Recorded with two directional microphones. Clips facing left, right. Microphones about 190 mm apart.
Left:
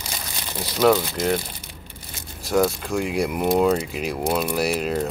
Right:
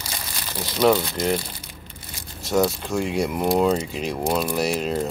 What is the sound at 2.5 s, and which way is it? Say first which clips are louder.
Speech: left 1 dB; centre (ahead or behind).